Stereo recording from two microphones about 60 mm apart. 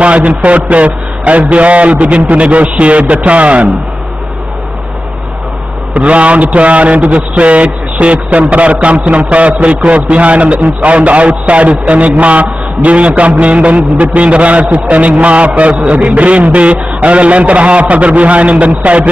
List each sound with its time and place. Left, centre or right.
0.0 s a man's voice: right
5.9 s a man's voice: right